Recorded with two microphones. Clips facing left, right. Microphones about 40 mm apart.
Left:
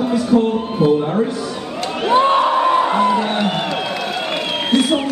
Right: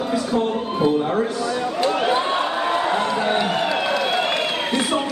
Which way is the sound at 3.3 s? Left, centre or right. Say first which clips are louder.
Left 1 dB; centre.